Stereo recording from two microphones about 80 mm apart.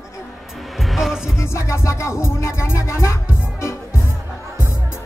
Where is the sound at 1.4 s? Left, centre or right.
Left.